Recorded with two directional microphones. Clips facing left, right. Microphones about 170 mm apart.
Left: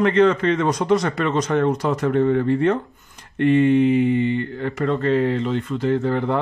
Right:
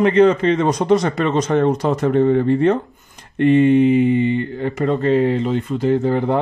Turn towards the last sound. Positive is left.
turn(degrees=-15)  # may be behind; listen again after turning